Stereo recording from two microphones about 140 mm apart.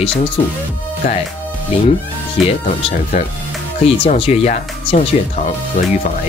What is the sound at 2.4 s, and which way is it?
Speech, centre (ahead or behind).